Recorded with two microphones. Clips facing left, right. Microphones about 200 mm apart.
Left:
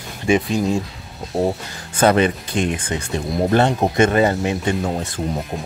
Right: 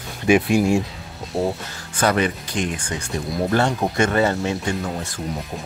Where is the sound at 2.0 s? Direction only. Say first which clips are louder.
Left 4 dB; 25° left (ahead or behind).